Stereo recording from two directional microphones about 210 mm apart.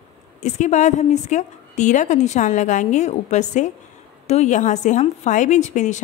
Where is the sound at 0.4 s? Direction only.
35° left (ahead or behind).